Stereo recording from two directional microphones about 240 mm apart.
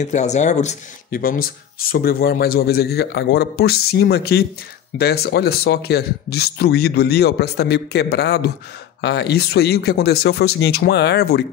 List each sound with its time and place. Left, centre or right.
0.0 s speech: left